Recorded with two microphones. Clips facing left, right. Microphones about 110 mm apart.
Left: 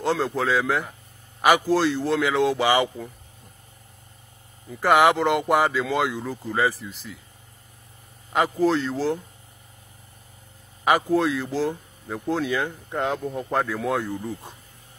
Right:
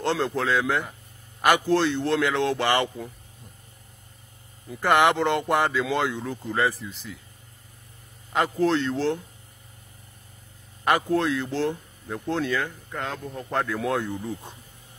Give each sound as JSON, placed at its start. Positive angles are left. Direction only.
{"t": 0.0, "sound": "speech", "side_deg": 0}
{"t": 4.6, "sound": "speech", "side_deg": 0}
{"t": 8.3, "sound": "speech", "side_deg": 5}
{"t": 10.8, "sound": "speech", "side_deg": 5}
{"t": 12.4, "sound": "speech", "side_deg": 15}
{"t": 13.2, "sound": "speech", "side_deg": 5}